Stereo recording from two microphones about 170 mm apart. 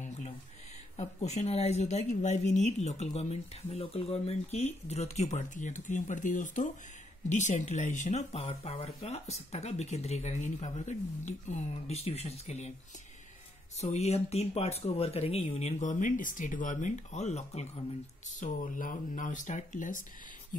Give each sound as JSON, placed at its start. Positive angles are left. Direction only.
{"t": 0.9, "sound": "speech", "side_deg": 40}
{"t": 13.7, "sound": "speech", "side_deg": 40}
{"t": 18.4, "sound": "speech", "side_deg": 50}